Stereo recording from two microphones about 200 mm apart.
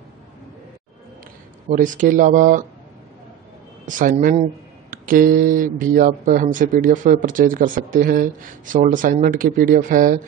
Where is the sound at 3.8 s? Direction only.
40° right (ahead or behind).